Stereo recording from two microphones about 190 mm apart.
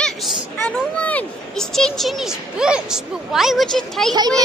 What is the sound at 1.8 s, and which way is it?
A woman's voice, centre (ahead or behind).